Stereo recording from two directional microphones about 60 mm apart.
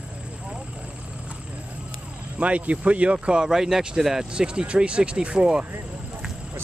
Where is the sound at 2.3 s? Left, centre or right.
Right.